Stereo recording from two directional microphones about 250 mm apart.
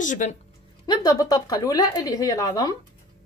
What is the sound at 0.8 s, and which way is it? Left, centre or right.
A woman's voice, centre.